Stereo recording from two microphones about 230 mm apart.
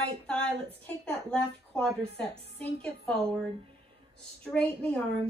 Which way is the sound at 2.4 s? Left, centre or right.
Right.